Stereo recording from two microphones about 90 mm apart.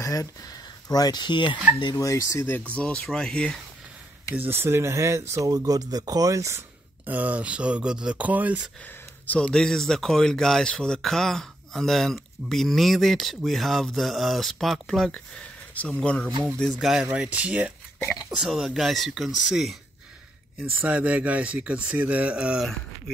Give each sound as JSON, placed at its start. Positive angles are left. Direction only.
{"t": 0.0, "sound": "speech", "side_deg": 40}
{"t": 2.0, "sound": "speech", "side_deg": 35}
{"t": 2.7, "sound": "speech", "side_deg": 10}
{"t": 4.4, "sound": "speech", "side_deg": -25}
{"t": 7.1, "sound": "speech", "side_deg": -15}
{"t": 9.2, "sound": "speech", "side_deg": 15}
{"t": 16.8, "sound": "speech", "side_deg": -5}
{"t": 20.7, "sound": "speech", "side_deg": -15}
{"t": 22.6, "sound": "speech", "side_deg": 0}